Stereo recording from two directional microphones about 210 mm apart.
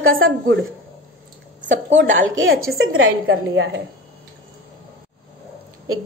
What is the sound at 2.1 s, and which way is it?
A woman's voice, 65° right (ahead or behind).